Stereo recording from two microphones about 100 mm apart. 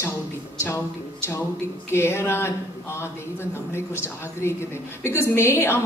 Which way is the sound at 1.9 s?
25° left (ahead or behind).